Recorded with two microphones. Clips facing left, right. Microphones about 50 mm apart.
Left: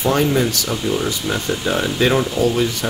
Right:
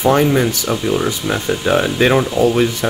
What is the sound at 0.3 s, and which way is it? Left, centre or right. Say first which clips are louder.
Speech: right 3 dB; right.